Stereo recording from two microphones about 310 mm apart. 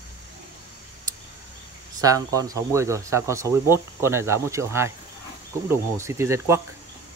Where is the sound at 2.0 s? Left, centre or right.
Centre.